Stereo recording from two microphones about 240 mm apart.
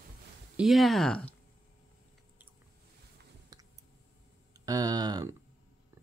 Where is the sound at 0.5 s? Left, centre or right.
Centre.